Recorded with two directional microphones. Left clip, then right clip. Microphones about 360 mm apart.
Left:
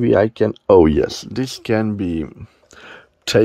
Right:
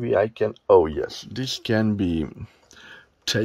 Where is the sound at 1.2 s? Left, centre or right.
Centre.